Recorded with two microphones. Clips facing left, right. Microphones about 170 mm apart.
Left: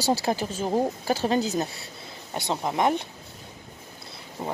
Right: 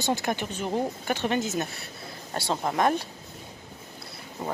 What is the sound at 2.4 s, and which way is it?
Speech, 20° left (ahead or behind).